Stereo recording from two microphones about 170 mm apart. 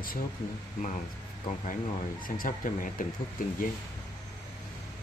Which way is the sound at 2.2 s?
55° left (ahead or behind).